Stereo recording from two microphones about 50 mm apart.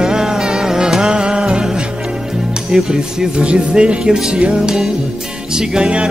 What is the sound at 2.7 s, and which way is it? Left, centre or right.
Speech, centre.